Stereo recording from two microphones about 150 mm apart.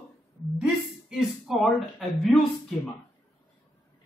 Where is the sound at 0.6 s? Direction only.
5° right (ahead or behind).